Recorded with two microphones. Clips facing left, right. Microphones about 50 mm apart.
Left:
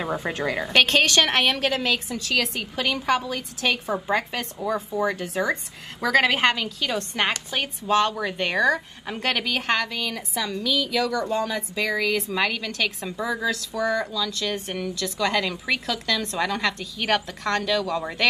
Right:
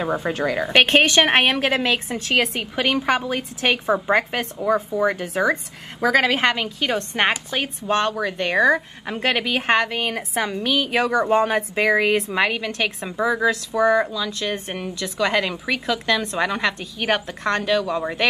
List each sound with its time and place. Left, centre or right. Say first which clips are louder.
0.1 s a woman's voice: right 4 dB; right
5.9 s a woman's voice: right 2 dB; centre
6.4 s a woman's voice: right 2 dB; right
8.2 s speech: right 3 dB; centre
8.5 s a woman's voice: right 4 dB; right